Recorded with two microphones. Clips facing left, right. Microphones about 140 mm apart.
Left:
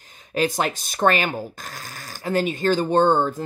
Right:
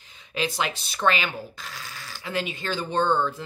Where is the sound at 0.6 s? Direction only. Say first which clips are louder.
Left 6 dB; 45° left (ahead or behind).